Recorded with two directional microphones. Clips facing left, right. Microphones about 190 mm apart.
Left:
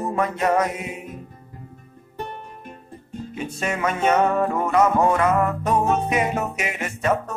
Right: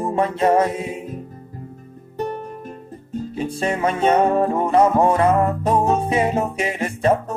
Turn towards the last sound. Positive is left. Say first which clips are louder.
# right 4 dB
turn(degrees=-30)  # may be behind; listen again after turning